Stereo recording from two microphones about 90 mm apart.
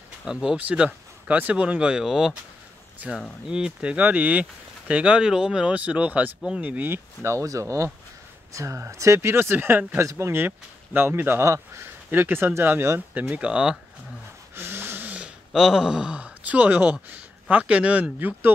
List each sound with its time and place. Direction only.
0.2 s speech: 5° right (ahead or behind)
3.0 s speech: 15° right (ahead or behind)
7.2 s speech: 35° right (ahead or behind); by 13.7 s 10° right (ahead or behind)
14.5 s gasp: 25° right (ahead or behind)
17.5 s speech: 15° right (ahead or behind)